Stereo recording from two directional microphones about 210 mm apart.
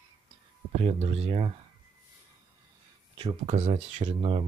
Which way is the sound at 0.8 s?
30° right (ahead or behind).